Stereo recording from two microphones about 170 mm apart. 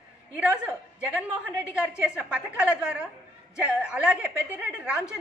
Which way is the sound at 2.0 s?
5° right (ahead or behind).